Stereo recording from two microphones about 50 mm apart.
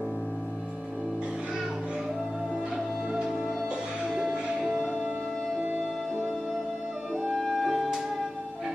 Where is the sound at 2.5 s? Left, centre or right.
Centre.